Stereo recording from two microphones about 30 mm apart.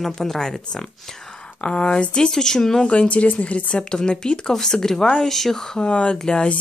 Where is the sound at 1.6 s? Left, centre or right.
Left.